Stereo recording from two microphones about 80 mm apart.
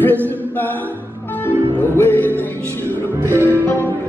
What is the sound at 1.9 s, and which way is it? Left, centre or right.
Music, left.